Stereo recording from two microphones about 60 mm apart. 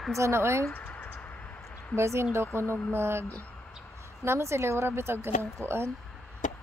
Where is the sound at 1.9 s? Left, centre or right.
Right.